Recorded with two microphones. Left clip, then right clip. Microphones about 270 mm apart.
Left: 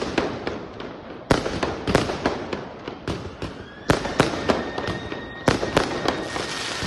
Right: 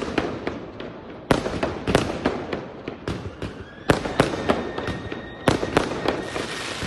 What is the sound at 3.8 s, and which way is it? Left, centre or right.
Fireworks, centre.